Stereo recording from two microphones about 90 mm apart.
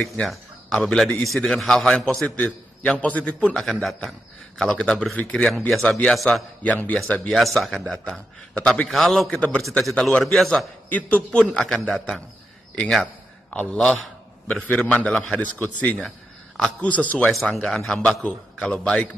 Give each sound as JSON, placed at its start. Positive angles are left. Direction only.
{"t": 0.0, "sound": "a man's voice", "side_deg": 5}
{"t": 6.6, "sound": "a man's voice", "side_deg": 15}
{"t": 7.3, "sound": "a man's voice", "side_deg": 0}
{"t": 10.9, "sound": "a man's voice", "side_deg": 15}
{"t": 12.9, "sound": "a sound", "side_deg": 5}
{"t": 13.7, "sound": "a man's voice", "side_deg": 5}
{"t": 15.6, "sound": "a man's voice", "side_deg": 15}
{"t": 17.3, "sound": "a man's voice", "side_deg": 0}